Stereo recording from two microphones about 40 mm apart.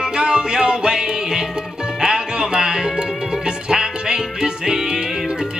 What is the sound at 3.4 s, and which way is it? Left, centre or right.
Music, centre.